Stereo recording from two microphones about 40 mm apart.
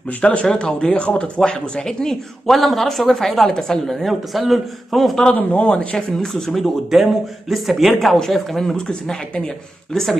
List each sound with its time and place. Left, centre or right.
0.2 s speech: left
1.9 s a woman's voice: centre
2.5 s a woman's voice: centre
4.1 s speech: centre
5.3 s speech: left
5.7 s speech: left
6.5 s speech: centre
8.3 s a woman's voice: centre